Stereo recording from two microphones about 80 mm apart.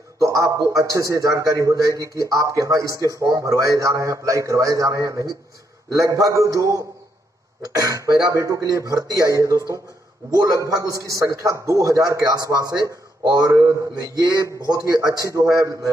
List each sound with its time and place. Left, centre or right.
0.2 s a man's voice: right